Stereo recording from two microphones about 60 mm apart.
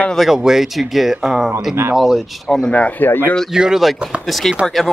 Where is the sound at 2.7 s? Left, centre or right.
Left.